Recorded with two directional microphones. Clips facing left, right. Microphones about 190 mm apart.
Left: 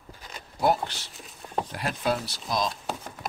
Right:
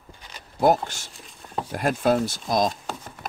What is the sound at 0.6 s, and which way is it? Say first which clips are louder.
Speech: right 5 dB; 45° right (ahead or behind).